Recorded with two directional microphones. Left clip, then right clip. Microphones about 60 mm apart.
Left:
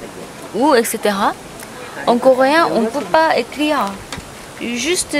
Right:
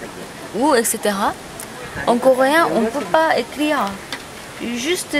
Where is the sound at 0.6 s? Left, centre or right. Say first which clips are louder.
Left 3 dB; left.